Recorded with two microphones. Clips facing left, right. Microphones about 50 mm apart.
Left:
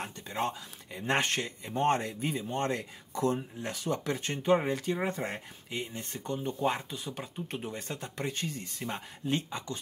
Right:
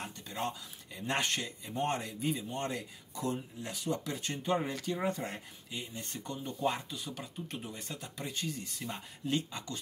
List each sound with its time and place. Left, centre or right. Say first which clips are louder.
0.0 s speech: left 4 dB; left